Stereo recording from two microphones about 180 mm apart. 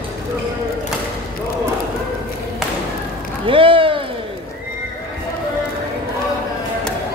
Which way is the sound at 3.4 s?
30° right (ahead or behind).